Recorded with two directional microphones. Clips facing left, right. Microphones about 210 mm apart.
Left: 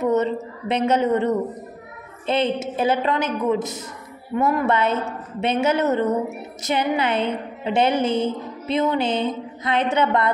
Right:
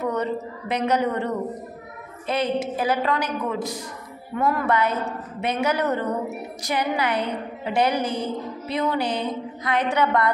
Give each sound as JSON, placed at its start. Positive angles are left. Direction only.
{"t": 0.0, "sound": "a woman's voice", "side_deg": 25}